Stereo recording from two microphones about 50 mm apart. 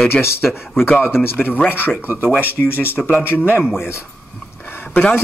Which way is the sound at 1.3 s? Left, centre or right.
Left.